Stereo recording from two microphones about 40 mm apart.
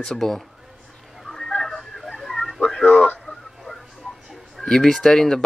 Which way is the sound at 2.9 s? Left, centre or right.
Left.